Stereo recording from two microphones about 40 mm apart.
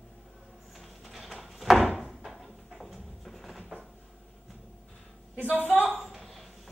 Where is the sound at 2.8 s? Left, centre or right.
Centre.